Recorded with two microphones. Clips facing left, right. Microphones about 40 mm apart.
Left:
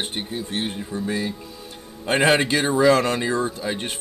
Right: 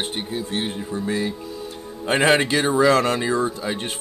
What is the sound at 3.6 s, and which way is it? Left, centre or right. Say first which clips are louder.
Speech: even; centre.